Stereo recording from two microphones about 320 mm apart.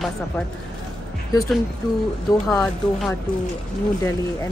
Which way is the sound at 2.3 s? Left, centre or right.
Centre.